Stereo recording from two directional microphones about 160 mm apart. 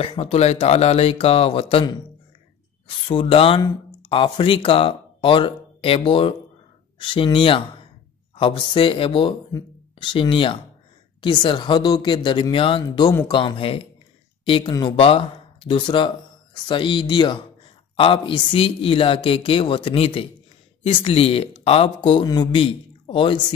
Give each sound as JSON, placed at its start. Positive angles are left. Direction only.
{"t": 0.0, "sound": "speech", "side_deg": 35}
{"t": 3.1, "sound": "speech", "side_deg": 35}